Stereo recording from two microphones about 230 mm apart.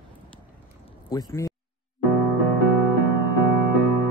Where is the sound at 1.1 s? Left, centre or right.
Centre.